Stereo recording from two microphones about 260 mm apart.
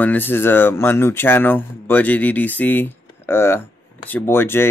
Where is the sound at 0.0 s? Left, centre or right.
Centre.